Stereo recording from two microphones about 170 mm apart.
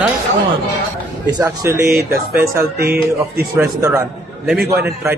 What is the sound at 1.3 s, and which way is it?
Speech, 20° right (ahead or behind).